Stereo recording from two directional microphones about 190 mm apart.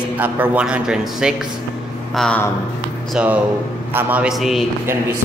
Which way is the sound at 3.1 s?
5° right (ahead or behind).